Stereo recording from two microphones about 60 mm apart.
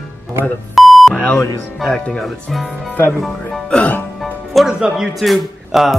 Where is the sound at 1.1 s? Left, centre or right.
Centre.